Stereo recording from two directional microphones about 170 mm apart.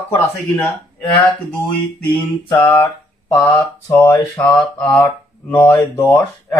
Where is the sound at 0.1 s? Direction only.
15° left (ahead or behind).